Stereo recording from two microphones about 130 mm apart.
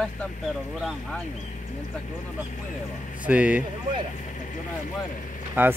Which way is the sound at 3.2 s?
10° right (ahead or behind).